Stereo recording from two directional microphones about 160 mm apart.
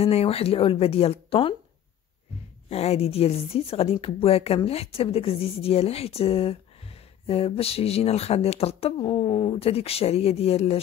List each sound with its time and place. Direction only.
0.0 s speech: 40° left (ahead or behind)
2.7 s speech: 40° left (ahead or behind)